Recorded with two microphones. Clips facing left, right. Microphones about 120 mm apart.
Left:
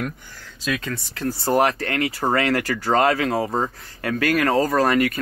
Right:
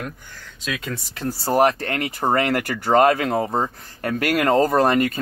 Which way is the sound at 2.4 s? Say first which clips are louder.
Left 1 dB; 45° right (ahead or behind).